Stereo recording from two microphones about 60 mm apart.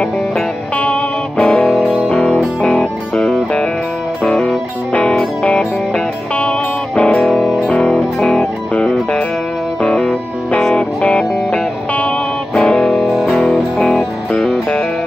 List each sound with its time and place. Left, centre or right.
1.4 s music: centre
7.0 s music: centre
7.9 s music: centre